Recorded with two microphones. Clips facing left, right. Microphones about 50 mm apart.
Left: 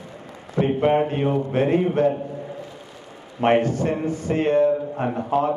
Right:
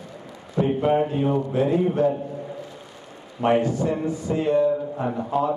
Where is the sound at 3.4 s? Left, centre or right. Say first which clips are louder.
Left 2 dB; left.